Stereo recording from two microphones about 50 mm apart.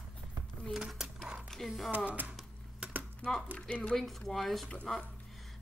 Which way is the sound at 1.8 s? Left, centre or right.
Right.